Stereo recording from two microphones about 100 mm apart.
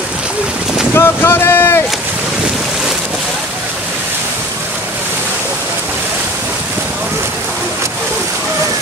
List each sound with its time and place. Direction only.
0.9 s speech: 25° left (ahead or behind)